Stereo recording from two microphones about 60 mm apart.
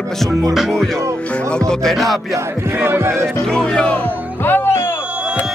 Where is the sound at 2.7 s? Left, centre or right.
Right.